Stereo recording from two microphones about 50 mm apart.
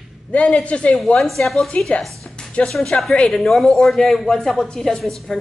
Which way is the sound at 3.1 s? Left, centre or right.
Centre.